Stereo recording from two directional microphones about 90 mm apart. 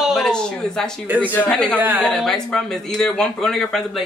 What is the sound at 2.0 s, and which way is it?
A man's voice, 5° left (ahead or behind).